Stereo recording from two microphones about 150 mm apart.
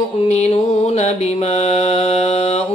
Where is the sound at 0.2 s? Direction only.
45° left (ahead or behind).